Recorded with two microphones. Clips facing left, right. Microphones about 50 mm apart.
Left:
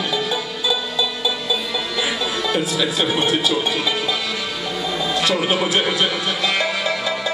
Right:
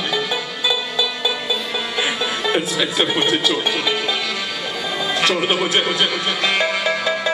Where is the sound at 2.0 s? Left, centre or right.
Right.